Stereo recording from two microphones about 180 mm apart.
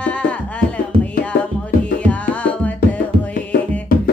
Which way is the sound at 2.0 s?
5° left (ahead or behind).